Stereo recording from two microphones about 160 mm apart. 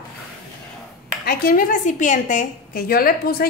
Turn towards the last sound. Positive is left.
turn(degrees=70)  # may be behind; listen again after turning